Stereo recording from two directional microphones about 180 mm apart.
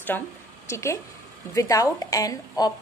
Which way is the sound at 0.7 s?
15° left (ahead or behind).